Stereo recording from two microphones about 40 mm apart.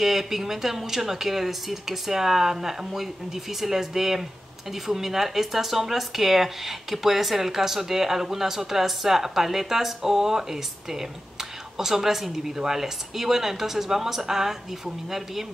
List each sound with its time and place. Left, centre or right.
0.0 s speech: centre